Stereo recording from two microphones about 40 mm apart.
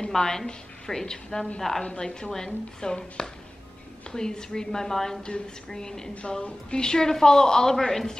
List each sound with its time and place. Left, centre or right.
0.1 s a woman's voice: centre